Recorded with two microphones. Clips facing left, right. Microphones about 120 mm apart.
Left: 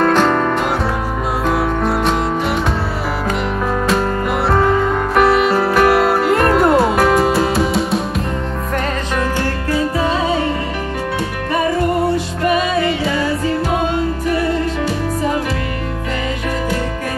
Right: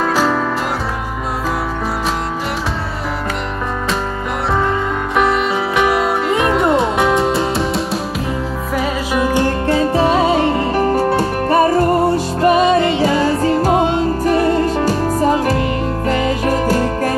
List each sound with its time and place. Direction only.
0.0 s music: 5° right (ahead or behind)
4.5 s music: centre (ahead or behind)
9.4 s music: 25° right (ahead or behind)
14.2 s music: 40° right (ahead or behind)
16.4 s music: 40° right (ahead or behind)